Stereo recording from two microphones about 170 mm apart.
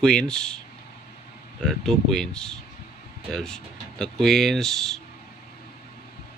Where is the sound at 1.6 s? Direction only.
5° left (ahead or behind).